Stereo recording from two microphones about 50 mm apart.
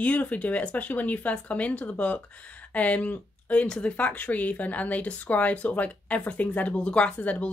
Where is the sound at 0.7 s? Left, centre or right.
Left.